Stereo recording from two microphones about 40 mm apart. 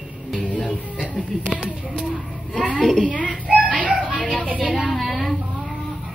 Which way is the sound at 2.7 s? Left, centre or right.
Centre.